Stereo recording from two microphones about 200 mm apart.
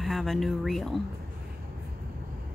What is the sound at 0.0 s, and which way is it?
Speech, centre (ahead or behind).